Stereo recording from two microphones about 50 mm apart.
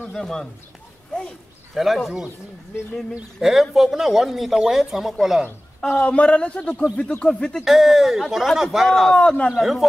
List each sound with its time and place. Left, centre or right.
0.1 s speech: centre
1.8 s speech: centre
3.3 s speech: centre
5.9 s a man's voice: left
7.6 s speech: centre
9.1 s a man's voice: left
9.6 s speech: centre